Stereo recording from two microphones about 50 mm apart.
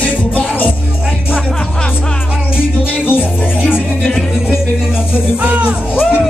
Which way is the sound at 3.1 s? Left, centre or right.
Left.